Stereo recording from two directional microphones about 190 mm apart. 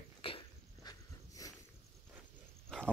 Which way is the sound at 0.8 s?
20° left (ahead or behind).